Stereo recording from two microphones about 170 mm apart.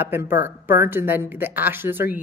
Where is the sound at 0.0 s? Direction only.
15° right (ahead or behind).